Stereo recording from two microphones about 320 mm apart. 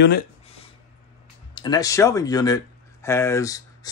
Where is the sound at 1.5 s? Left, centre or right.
Centre.